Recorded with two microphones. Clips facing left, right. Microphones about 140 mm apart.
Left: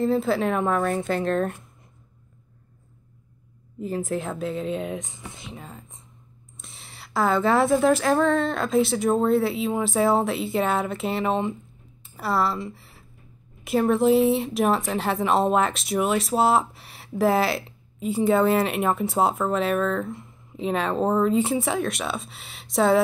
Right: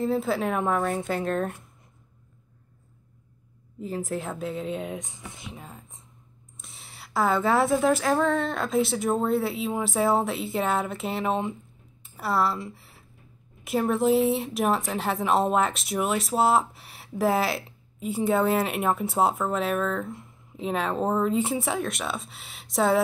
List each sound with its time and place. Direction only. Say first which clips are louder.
0.0 s speech: left 3 dB; 5° right (ahead or behind)
4.4 s speech: left 3 dB; 75° left (ahead or behind)
6.6 s speech: left 1 dB; 5° right (ahead or behind)
13.7 s speech: left 3 dB; centre (ahead or behind)